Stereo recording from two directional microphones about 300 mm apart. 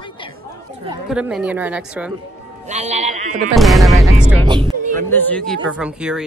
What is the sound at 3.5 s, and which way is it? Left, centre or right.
Speech, centre.